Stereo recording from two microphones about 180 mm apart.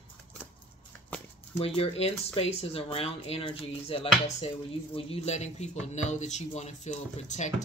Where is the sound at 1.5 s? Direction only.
30° left (ahead or behind).